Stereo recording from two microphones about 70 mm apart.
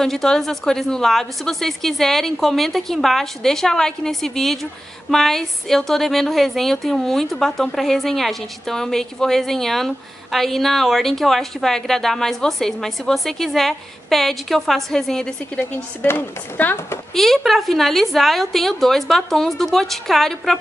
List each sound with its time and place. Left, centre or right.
0.0 s a woman's voice: centre
16.0 s speech: left
17.1 s a woman's voice: centre